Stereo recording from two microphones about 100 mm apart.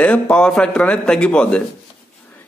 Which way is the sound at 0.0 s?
10° left (ahead or behind).